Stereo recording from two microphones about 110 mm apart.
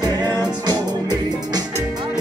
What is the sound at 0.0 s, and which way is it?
Music, 40° right (ahead or behind).